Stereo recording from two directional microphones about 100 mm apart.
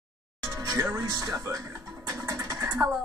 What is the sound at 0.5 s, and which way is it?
Music, 35° right (ahead or behind).